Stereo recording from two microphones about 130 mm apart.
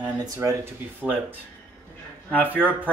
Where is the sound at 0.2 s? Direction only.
25° right (ahead or behind).